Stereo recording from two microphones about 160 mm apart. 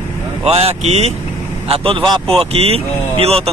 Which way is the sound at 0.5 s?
40° right (ahead or behind).